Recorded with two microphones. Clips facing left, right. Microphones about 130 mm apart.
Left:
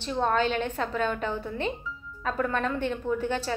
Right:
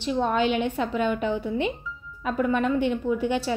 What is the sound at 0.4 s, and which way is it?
A woman's voice, 15° right (ahead or behind).